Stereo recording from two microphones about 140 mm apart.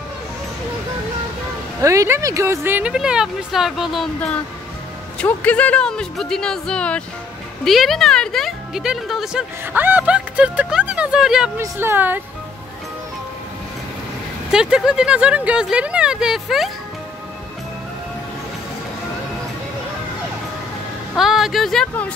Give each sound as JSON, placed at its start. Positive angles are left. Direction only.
{"t": 1.8, "sound": "speech", "side_deg": -20}
{"t": 5.2, "sound": "speech", "side_deg": 10}
{"t": 9.7, "sound": "speech", "side_deg": -15}
{"t": 11.5, "sound": "speech", "side_deg": -15}
{"t": 14.5, "sound": "speech", "side_deg": -5}
{"t": 21.2, "sound": "speech", "side_deg": 0}